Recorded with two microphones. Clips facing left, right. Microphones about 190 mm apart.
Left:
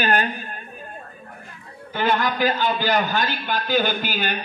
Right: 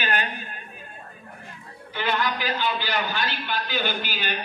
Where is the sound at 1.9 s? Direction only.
45° left (ahead or behind).